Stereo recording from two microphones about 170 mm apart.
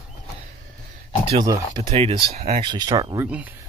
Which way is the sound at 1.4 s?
20° right (ahead or behind).